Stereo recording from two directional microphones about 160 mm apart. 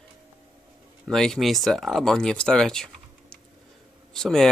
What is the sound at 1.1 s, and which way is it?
Speech, centre (ahead or behind).